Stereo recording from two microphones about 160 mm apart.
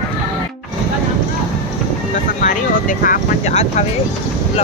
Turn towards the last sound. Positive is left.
turn(degrees=60)  # may be behind; listen again after turning